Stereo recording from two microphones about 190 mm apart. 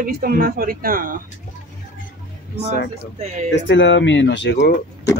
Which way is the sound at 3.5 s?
70° left (ahead or behind).